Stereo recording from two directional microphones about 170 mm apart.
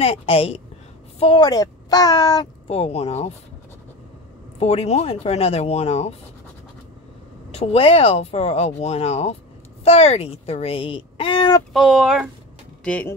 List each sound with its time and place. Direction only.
0.0 s speech: 35° left (ahead or behind)
2.7 s speech: 40° left (ahead or behind)
4.6 s speech: 35° left (ahead or behind)
7.5 s speech: 35° left (ahead or behind)
11.7 s speech: centre (ahead or behind)